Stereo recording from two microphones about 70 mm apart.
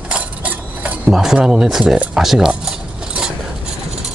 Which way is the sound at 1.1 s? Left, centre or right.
Centre.